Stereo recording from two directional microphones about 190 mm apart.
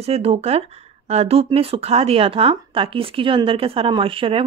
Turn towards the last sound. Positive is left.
turn(degrees=-30)  # may be behind; listen again after turning